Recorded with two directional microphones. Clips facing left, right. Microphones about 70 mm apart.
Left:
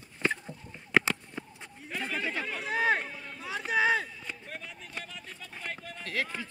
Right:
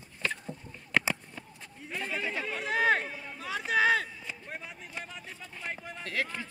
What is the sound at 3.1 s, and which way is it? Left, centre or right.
Run, centre.